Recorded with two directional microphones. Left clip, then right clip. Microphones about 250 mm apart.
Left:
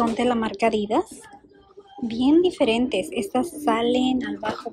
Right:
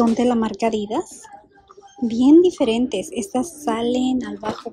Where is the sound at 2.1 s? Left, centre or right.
Centre.